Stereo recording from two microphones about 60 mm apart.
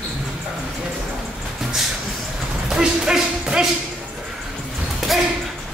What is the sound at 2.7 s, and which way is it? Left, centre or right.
Music, centre.